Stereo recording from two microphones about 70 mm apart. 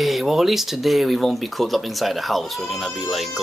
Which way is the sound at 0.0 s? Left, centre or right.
Centre.